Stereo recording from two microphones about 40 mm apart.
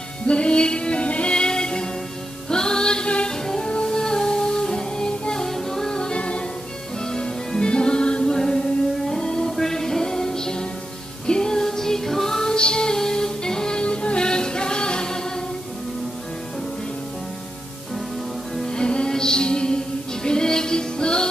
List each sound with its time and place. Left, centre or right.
0.3 s music: left
1.3 s music: centre
5.4 s music: centre
5.9 s music: left
13.7 s music: left
18.7 s music: left